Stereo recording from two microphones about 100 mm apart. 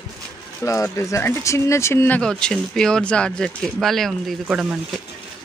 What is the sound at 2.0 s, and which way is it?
A woman's voice, 10° left (ahead or behind).